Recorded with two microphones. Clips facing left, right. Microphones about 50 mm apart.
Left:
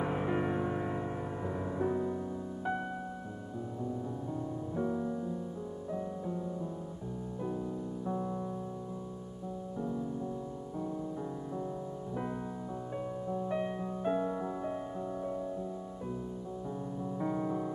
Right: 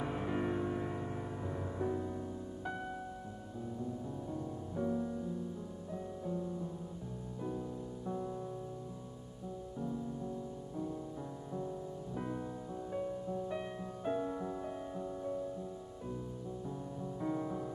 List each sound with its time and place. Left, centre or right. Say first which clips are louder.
0.0 s music: left 4 dB; centre
4.3 s music: left 4 dB; centre
6.2 s music: left 2 dB; centre
8.1 s music: left 3 dB; centre
12.9 s music: left 1 dB; centre
17.0 s music: left 3 dB; centre